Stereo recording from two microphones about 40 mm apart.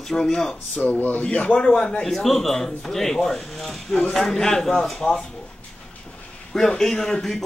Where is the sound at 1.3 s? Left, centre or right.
Left.